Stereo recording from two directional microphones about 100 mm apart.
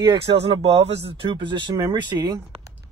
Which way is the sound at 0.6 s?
90° right.